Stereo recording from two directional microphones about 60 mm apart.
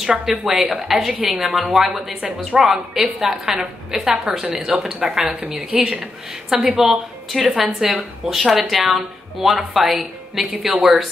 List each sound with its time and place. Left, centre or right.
0.0 s a woman's voice: centre
6.8 s speech: centre